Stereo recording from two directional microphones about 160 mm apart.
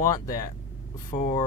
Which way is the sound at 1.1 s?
45° left (ahead or behind).